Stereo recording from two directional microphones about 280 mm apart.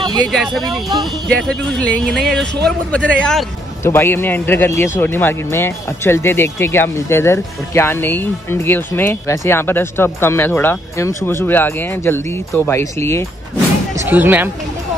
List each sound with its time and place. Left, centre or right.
0.0 s speech: centre
0.3 s a man's voice: centre
13.9 s speech: centre